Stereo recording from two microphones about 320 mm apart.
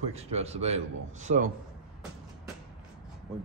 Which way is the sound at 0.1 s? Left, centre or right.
Centre.